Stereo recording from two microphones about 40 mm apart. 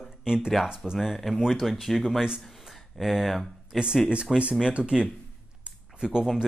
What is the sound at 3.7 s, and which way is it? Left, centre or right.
Speech, centre.